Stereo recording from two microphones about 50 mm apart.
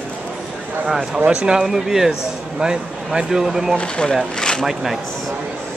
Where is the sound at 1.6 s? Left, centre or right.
Centre.